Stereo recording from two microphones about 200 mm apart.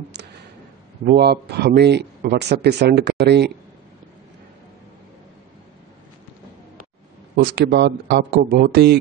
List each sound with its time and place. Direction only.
1.0 s speech: 50° right (ahead or behind)
7.3 s speech: 55° right (ahead or behind)